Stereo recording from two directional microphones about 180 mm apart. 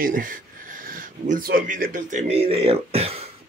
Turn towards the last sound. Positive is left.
turn(degrees=-35)  # may be behind; listen again after turning